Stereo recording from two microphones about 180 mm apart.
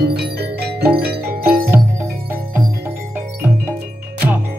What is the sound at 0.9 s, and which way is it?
Music, 60° right (ahead or behind).